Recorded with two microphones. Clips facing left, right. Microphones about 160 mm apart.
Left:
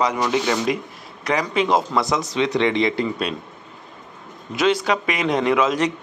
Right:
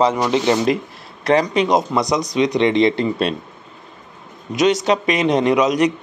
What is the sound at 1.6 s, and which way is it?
Speech, 20° right (ahead or behind).